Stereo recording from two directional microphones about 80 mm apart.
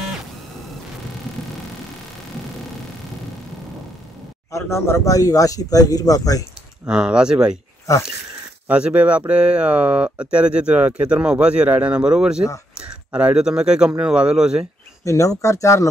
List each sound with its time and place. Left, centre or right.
4.5 s speech: left
6.9 s speech: centre
8.6 s speech: centre
15.0 s speech: left